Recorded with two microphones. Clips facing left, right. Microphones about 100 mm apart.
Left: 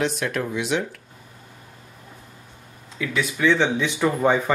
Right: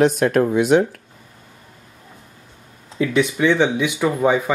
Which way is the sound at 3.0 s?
20° right (ahead or behind).